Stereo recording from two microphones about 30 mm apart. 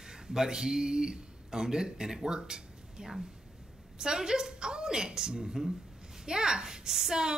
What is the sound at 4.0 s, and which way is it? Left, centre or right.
A man's voice, right.